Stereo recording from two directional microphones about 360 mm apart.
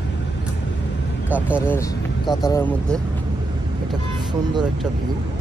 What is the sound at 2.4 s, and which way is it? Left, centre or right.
Speech, centre.